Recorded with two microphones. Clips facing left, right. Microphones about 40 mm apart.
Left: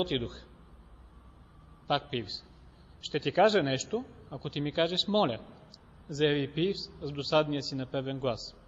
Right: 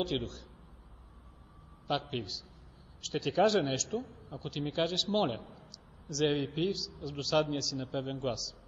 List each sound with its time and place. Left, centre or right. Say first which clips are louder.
0.0 s a man's voice: left 2 dB; left
1.9 s a man's voice: left 3 dB; left